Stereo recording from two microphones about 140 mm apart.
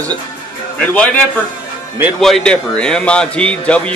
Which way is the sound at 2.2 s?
5° left (ahead or behind).